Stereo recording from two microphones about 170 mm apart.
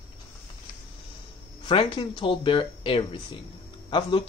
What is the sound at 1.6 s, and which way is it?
Speech, 30° left (ahead or behind).